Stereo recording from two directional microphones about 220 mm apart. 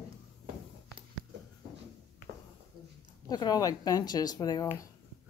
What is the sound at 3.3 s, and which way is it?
Speech, 20° left (ahead or behind).